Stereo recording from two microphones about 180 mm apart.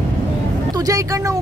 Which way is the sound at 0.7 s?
20° right (ahead or behind).